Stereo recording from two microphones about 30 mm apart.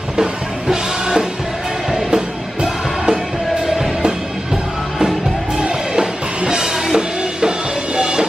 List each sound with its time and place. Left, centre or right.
0.2 s music: right
5.6 s music: right